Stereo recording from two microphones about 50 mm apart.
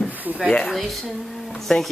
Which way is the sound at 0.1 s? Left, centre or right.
Right.